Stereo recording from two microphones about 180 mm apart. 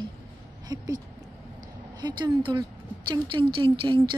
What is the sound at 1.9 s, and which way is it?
A woman's voice, 25° right (ahead or behind).